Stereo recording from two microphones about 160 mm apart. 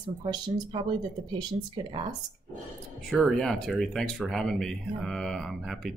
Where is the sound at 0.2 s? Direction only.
30° right (ahead or behind).